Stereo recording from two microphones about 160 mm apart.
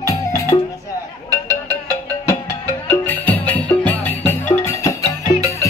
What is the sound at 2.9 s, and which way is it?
Music, 15° left (ahead or behind).